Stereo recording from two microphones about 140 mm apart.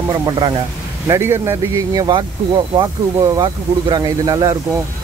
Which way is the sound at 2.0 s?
35° right (ahead or behind).